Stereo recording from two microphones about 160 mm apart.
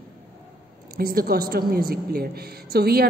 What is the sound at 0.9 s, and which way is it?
A woman's voice, 70° right (ahead or behind).